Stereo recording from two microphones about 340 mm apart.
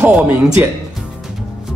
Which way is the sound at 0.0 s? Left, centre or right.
Centre.